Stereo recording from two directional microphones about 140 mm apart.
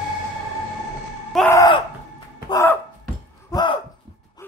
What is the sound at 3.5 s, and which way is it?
Gasp, 35° left (ahead or behind).